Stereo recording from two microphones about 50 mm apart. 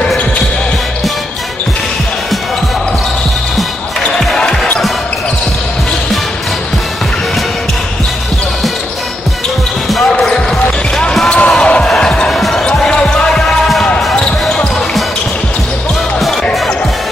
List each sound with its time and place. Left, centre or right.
11.2 s basketball bounce: left
12.3 s basketball bounce: centre
12.6 s basketball bounce: centre